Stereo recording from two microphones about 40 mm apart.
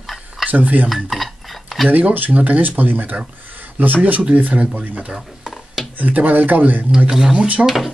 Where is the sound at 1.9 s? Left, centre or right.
Right.